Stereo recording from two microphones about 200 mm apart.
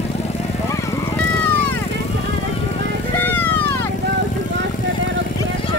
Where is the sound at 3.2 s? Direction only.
10° left (ahead or behind).